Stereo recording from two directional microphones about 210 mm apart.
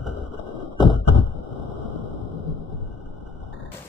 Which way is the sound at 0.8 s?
Centre (ahead or behind).